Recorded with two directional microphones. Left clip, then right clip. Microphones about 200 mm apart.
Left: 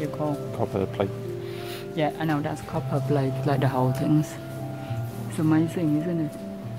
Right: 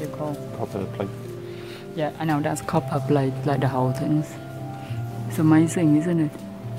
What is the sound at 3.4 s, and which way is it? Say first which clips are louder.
Speech: right 1 dB; 10° right (ahead or behind).